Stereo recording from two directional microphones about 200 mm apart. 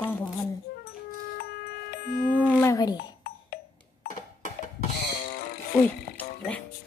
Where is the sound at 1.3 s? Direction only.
50° left (ahead or behind).